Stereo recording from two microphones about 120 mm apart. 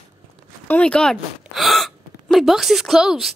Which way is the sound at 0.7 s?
10° left (ahead or behind).